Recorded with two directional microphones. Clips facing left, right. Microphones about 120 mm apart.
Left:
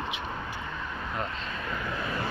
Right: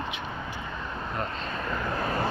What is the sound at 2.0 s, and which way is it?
Vehicle, 45° right (ahead or behind).